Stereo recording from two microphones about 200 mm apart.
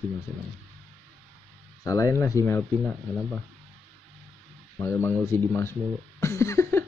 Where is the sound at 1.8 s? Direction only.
15° left (ahead or behind).